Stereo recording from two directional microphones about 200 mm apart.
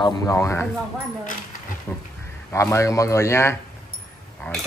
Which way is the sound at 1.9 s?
10° left (ahead or behind).